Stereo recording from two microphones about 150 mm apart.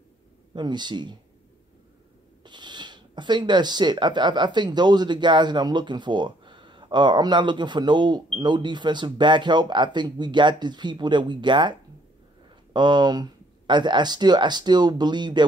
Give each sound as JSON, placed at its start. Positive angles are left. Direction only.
{"t": 0.6, "sound": "speech", "side_deg": -30}
{"t": 2.4, "sound": "speech", "side_deg": -30}
{"t": 12.7, "sound": "speech", "side_deg": -30}